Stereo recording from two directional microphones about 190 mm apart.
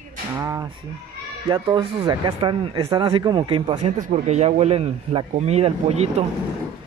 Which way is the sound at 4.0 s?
35° right (ahead or behind).